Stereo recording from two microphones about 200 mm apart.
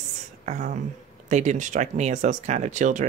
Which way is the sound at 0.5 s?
35° right (ahead or behind).